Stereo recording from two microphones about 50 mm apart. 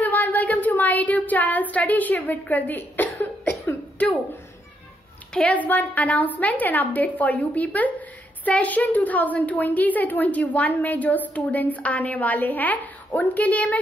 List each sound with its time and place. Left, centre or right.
0.0 s a sound: left
4.0 s speech: left
5.4 s a woman's voice: left